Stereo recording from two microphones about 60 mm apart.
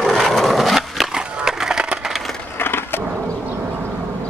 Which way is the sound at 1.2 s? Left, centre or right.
Centre.